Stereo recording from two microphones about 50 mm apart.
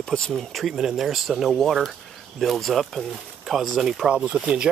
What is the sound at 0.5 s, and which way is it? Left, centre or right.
Speech, centre.